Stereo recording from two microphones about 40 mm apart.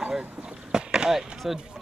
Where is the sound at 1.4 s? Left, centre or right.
Centre.